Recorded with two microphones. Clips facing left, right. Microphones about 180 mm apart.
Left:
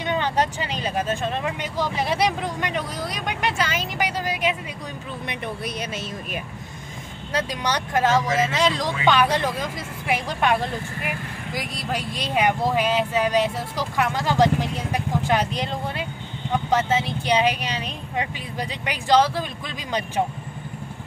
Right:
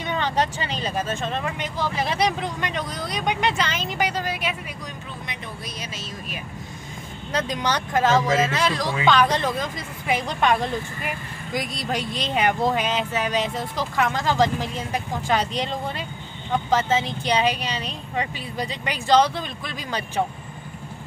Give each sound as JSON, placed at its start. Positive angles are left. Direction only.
{"t": 0.0, "sound": "speech", "side_deg": 15}
{"t": 5.3, "sound": "speech", "side_deg": 60}
{"t": 7.3, "sound": "speech", "side_deg": 10}